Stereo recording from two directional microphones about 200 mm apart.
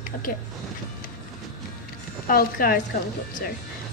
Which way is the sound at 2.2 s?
45° left (ahead or behind).